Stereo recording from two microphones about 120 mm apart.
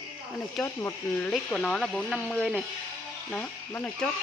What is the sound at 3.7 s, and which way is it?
Speech, 20° left (ahead or behind).